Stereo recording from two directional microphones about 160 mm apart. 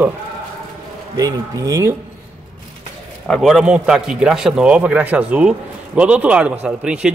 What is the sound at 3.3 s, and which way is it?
A man's voice, centre (ahead or behind).